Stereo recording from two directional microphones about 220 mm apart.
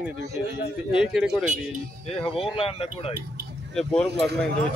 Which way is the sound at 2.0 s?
25° left (ahead or behind).